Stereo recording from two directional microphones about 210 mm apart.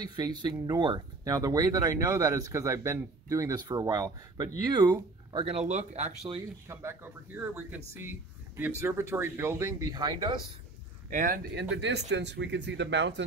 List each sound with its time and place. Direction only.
0.0 s speech: 20° right (ahead or behind)
6.7 s speech: 10° right (ahead or behind)
11.1 s speech: 40° right (ahead or behind)
11.7 s speech: 55° right (ahead or behind)